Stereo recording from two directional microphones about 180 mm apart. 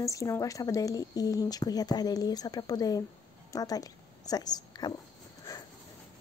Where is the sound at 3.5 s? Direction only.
20° left (ahead or behind).